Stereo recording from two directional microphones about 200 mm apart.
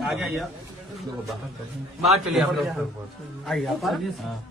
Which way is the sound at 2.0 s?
Centre (ahead or behind).